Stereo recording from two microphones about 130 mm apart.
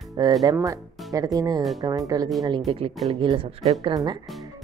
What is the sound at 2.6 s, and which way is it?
Speech, 50° right (ahead or behind).